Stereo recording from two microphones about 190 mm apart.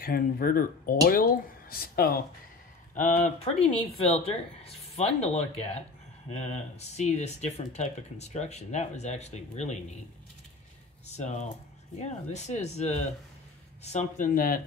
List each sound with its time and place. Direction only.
0.0 s speech: 50° left (ahead or behind)
3.0 s speech: 40° left (ahead or behind)
11.1 s speech: 35° left (ahead or behind)